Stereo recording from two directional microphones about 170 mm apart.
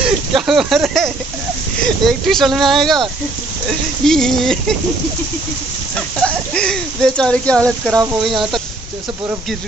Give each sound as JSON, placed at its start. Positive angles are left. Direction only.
{"t": 0.0, "sound": "a sound", "side_deg": 0}
{"t": 2.0, "sound": "speech", "side_deg": 0}
{"t": 5.9, "sound": "speech", "side_deg": 5}
{"t": 7.9, "sound": "speech", "side_deg": -20}
{"t": 8.2, "sound": "speech", "side_deg": 0}